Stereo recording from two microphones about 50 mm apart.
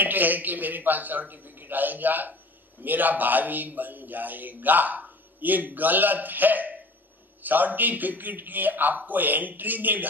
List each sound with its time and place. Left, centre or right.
0.0 s a man's voice: right